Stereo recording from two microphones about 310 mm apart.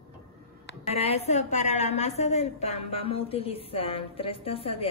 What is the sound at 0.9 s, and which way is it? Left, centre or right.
A woman's voice, centre.